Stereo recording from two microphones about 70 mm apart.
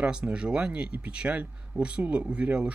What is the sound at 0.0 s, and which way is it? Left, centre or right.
Speech, centre.